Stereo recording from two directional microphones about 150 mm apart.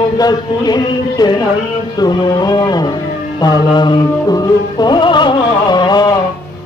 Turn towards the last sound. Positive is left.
turn(degrees=30)  # may be behind; listen again after turning